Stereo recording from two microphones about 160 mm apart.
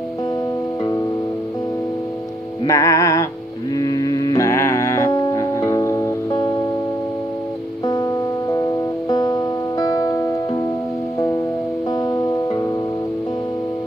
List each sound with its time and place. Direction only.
2.6 s music: 20° left (ahead or behind)
7.8 s music: 25° left (ahead or behind)
11.9 s music: 25° left (ahead or behind)